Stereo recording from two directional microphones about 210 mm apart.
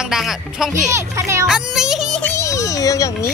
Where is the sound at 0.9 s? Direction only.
15° right (ahead or behind).